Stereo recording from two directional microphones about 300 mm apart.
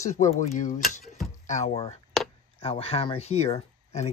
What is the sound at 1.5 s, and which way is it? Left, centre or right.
Speech, left.